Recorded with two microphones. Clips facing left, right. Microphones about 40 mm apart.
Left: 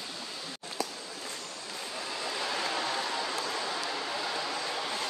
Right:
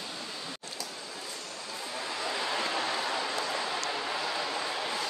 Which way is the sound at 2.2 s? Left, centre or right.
Centre.